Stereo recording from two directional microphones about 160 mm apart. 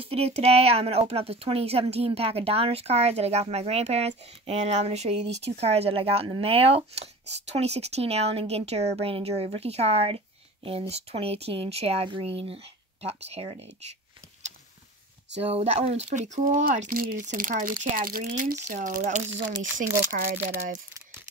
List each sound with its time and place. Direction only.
0.0 s speech: 40° right (ahead or behind)
15.5 s speech: 40° right (ahead or behind)
20.1 s speech: 60° right (ahead or behind)